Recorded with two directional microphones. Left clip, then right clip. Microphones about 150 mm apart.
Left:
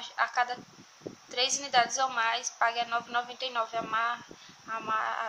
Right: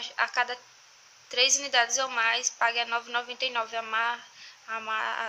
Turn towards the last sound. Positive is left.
turn(degrees=-10)  # may be behind; listen again after turning